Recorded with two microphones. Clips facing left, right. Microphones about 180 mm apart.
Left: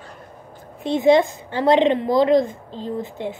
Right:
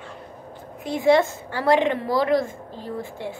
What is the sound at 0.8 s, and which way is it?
A woman's voice, 20° left (ahead or behind).